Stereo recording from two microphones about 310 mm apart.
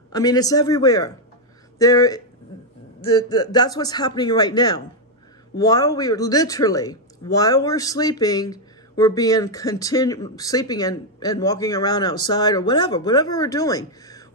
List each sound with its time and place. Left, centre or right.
0.1 s a man's voice: centre
3.0 s a man's voice: left
3.3 s a man's voice: centre